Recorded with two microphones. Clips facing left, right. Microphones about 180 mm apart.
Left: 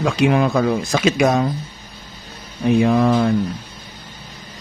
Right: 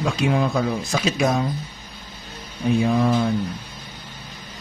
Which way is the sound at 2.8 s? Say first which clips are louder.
Left 4 dB; 65° left (ahead or behind).